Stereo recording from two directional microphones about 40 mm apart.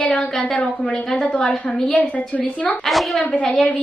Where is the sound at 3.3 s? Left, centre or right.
Left.